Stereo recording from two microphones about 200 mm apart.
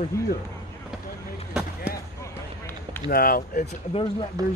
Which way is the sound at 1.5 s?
5° right (ahead or behind).